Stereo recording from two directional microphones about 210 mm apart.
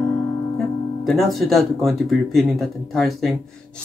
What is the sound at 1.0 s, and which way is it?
Speech, centre (ahead or behind).